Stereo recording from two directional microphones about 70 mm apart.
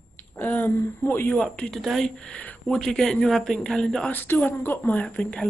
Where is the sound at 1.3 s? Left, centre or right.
Centre.